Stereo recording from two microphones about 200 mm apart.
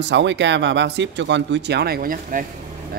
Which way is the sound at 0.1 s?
65° right (ahead or behind).